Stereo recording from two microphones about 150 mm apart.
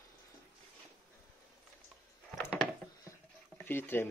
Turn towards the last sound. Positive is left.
turn(degrees=15)  # may be behind; listen again after turning